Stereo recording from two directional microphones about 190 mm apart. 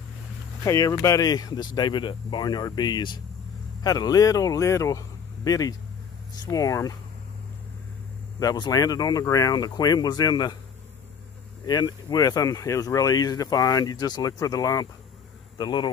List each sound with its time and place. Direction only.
0.7 s speech: 15° left (ahead or behind)
8.4 s speech: 20° left (ahead or behind)
11.6 s speech: 20° left (ahead or behind)